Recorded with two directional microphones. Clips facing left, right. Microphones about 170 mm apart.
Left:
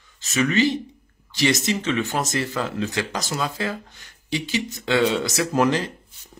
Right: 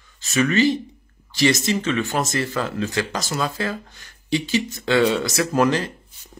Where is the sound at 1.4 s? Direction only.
20° left (ahead or behind).